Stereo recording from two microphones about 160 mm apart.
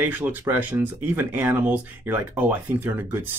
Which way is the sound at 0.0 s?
10° right (ahead or behind).